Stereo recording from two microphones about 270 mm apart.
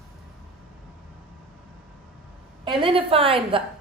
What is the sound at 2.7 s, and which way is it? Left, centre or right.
Speech, centre.